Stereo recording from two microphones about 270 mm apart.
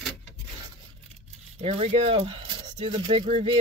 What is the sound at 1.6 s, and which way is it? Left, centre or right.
Speech, right.